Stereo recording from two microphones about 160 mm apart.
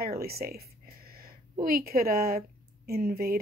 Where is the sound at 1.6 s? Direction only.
65° right (ahead or behind).